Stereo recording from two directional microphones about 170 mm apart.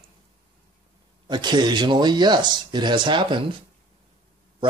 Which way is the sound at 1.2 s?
25° right (ahead or behind).